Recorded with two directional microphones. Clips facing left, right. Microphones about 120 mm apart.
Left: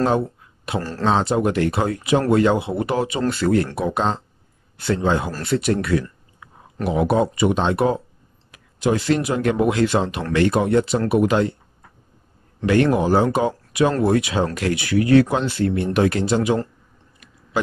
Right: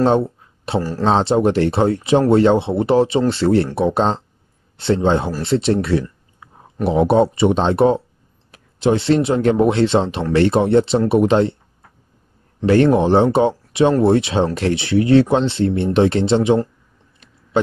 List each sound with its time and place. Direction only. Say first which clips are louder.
0.7 s speech: right 3 dB; 30° right (ahead or behind)
12.6 s speech: right 4 dB; 30° right (ahead or behind)